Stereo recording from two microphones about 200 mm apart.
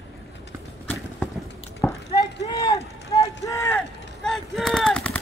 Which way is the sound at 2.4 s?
20° left (ahead or behind).